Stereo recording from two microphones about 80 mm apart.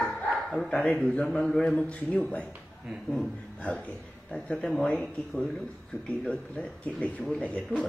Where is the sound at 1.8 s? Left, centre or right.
Centre.